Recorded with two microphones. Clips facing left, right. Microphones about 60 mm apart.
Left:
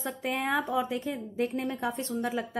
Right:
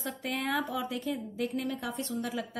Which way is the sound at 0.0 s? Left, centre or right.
Left.